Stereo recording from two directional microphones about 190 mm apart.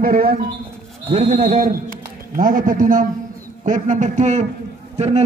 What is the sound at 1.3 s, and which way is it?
A man's voice, 45° right (ahead or behind).